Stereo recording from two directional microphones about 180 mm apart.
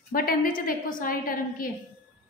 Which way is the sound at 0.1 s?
50° left (ahead or behind).